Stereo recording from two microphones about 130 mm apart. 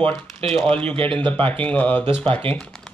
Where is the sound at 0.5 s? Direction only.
45° right (ahead or behind).